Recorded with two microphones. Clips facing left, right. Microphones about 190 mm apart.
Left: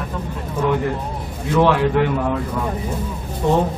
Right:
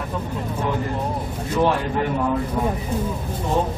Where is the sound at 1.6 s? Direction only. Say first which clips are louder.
Left 5 dB; 75° left (ahead or behind).